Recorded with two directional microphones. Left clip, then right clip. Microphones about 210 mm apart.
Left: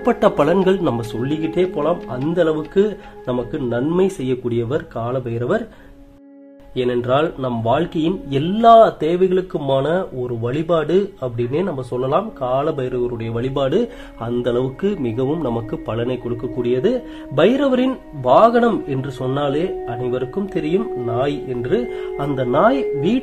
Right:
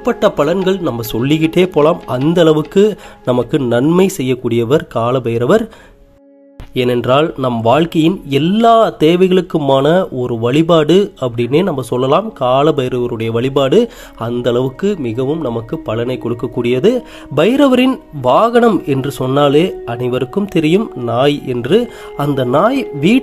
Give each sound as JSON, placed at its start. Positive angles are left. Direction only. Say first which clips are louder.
{"t": 0.0, "sound": "speech", "louder": "right 3 dB", "side_deg": -5}
{"t": 1.2, "sound": "speech", "louder": "right 7 dB", "side_deg": -30}
{"t": 6.7, "sound": "speech", "louder": "right 5 dB", "side_deg": -25}